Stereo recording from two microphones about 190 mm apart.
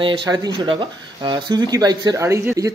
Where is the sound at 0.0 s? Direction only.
25° right (ahead or behind).